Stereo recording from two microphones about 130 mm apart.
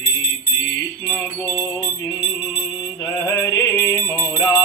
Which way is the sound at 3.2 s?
20° left (ahead or behind).